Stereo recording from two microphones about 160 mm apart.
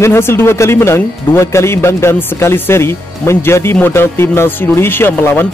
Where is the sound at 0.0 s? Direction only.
15° left (ahead or behind).